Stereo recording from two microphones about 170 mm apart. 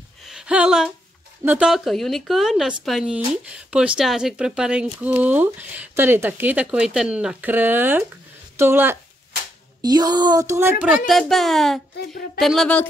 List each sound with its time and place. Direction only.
0.2 s a sound: 5° right (ahead or behind)
1.4 s a woman's voice: 10° right (ahead or behind)
9.8 s speech: 25° right (ahead or behind)
11.1 s a woman's voice: centre (ahead or behind)